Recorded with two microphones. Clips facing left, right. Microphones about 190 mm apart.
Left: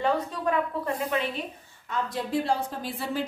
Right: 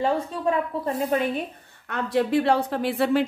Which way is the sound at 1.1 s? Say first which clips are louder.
Right 6 dB; 40° right (ahead or behind).